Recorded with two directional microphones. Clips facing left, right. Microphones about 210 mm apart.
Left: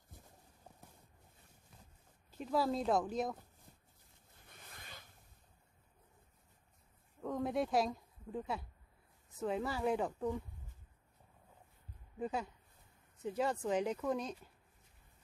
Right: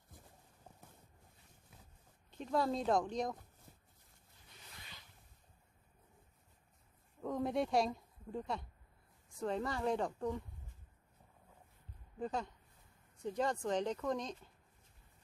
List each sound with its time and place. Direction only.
2.3 s speech: 5° left (ahead or behind)
4.5 s zipper: 50° left (ahead or behind)
7.2 s a sound: centre (ahead or behind)
9.4 s speech: 5° left (ahead or behind)
12.2 s speech: 10° left (ahead or behind)